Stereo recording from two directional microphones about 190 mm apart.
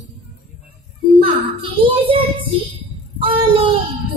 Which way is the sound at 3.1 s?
25° right (ahead or behind).